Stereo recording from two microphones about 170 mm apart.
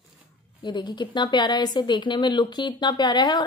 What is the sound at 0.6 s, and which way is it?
A woman's voice, 25° left (ahead or behind).